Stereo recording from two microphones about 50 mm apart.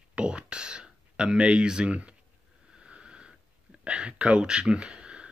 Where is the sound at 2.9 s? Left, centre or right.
Centre.